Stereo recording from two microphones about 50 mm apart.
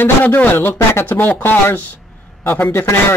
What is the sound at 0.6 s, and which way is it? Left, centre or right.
Speech, left.